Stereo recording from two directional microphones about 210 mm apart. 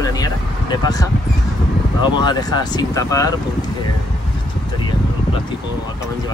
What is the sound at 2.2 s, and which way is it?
Speech, 20° left (ahead or behind).